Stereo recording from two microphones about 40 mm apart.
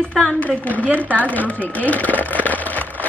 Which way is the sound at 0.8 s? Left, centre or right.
Right.